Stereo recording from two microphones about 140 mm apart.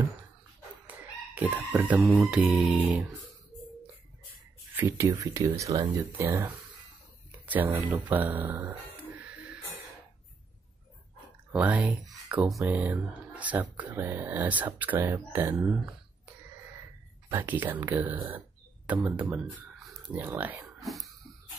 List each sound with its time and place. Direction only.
0.8 s chicken: 10° right (ahead or behind)
2.0 s speech: centre (ahead or behind)
2.5 s speech: 10° right (ahead or behind)
4.7 s speech: 15° right (ahead or behind)
11.5 s speech: 10° right (ahead or behind)
17.3 s speech: 15° right (ahead or behind)